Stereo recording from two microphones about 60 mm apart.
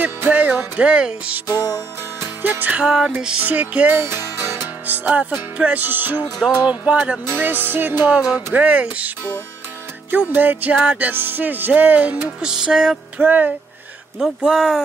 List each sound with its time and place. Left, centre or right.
0.0 s music: right
0.7 s speech: centre
1.5 s music: left
2.4 s music: right
2.8 s speech: centre
3.3 s music: right
7.2 s music: right
8.2 s speech: centre
8.5 s music: right
10.1 s music: right
12.4 s speech: centre
13.2 s music: right
14.1 s speech: centre